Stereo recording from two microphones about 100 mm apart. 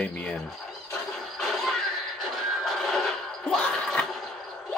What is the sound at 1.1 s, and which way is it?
Music, centre (ahead or behind).